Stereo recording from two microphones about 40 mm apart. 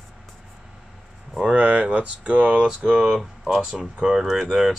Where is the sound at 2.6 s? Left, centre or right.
Centre.